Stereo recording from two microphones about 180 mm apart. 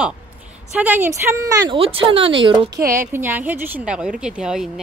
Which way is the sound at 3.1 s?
10° right (ahead or behind).